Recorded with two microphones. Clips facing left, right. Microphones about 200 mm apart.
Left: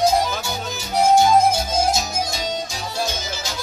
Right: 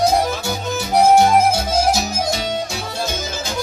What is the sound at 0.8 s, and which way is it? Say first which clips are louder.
Music: right 3 dB; 65° right (ahead or behind).